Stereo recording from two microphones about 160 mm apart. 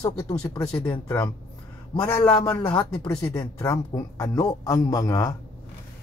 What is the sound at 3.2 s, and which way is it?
Speech, 20° left (ahead or behind).